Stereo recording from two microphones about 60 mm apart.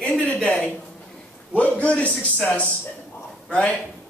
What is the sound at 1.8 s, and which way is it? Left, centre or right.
A man's voice, left.